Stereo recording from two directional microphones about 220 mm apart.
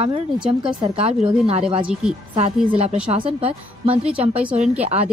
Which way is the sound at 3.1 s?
25° right (ahead or behind).